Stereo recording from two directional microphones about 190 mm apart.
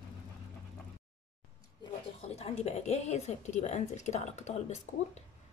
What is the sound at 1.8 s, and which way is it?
Speech, 30° left (ahead or behind).